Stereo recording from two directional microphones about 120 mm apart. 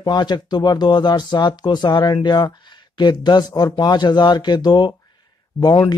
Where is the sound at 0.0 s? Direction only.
35° left (ahead or behind).